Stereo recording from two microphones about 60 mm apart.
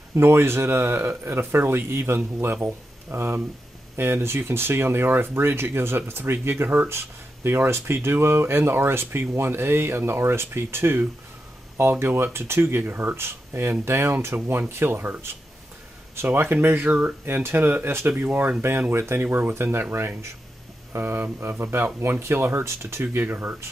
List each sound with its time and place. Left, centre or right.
0.1 s speech: right
14.3 s speech: right
16.6 s speech: right